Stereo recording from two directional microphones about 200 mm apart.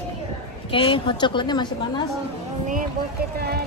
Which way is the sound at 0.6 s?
25° left (ahead or behind).